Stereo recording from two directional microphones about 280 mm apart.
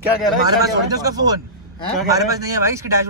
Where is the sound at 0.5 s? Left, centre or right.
Centre.